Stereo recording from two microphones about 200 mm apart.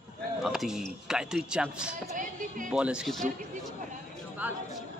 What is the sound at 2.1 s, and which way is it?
Speech, 40° right (ahead or behind).